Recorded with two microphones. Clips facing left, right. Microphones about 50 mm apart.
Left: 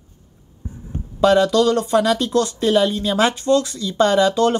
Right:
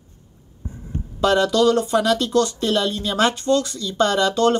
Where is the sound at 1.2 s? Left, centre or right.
Centre.